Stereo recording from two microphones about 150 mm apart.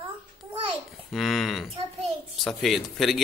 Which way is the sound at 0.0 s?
35° right (ahead or behind).